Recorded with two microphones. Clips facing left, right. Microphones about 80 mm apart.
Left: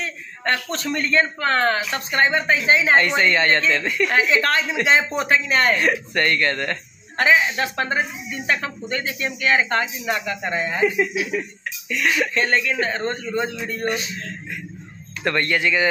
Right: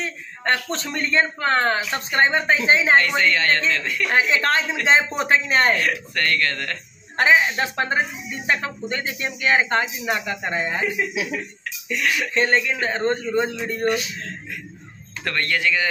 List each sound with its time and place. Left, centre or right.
0.4 s speech: right
3.0 s speech: left
4.1 s speech: right
5.8 s speech: left
7.2 s speech: right
12.0 s speech: left
12.4 s speech: right
13.8 s speech: left
15.2 s speech: left